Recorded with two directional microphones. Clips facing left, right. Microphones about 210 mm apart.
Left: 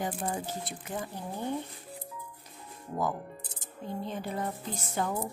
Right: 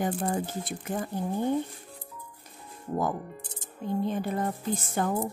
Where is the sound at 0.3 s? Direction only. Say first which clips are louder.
Right 5 dB; 50° right (ahead or behind).